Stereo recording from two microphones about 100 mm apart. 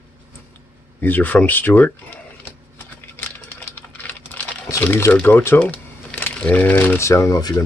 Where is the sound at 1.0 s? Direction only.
20° left (ahead or behind).